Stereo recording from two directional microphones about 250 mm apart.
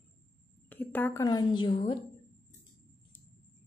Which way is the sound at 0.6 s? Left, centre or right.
Centre.